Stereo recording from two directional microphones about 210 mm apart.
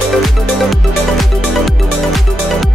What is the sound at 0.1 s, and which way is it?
Music, centre (ahead or behind).